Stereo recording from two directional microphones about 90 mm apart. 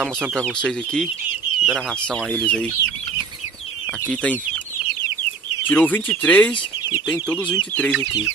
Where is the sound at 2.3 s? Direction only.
15° left (ahead or behind).